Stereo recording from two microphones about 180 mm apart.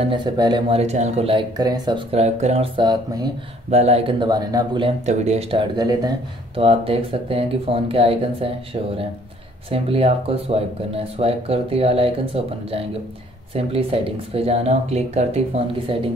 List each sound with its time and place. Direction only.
0.0 s speech: 25° right (ahead or behind)
2.1 s speech: 35° right (ahead or behind)
3.7 s speech: 35° right (ahead or behind)
5.0 s speech: 40° right (ahead or behind)
9.7 s speech: 30° right (ahead or behind)
14.3 s speech: 35° right (ahead or behind)